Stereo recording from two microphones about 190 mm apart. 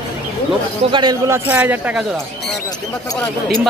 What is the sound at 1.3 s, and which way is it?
Speech, 10° right (ahead or behind).